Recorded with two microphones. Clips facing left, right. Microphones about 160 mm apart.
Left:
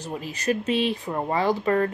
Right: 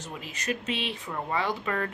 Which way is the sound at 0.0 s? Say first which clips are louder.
Left 8 dB; 35° left (ahead or behind).